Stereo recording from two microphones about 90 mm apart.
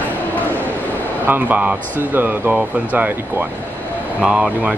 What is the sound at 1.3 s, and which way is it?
Speech, 20° right (ahead or behind).